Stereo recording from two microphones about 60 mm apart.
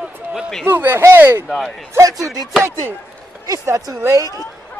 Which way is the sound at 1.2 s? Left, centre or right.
Right.